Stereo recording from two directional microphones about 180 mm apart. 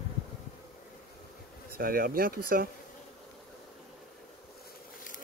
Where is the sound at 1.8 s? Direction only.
55° right (ahead or behind).